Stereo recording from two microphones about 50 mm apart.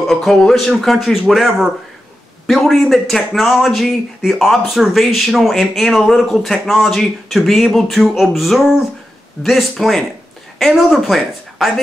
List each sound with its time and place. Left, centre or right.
0.1 s speech: centre